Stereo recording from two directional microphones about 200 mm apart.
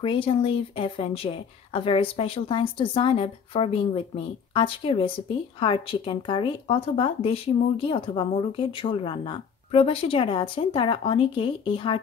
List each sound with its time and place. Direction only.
0.0 s speech: 25° left (ahead or behind)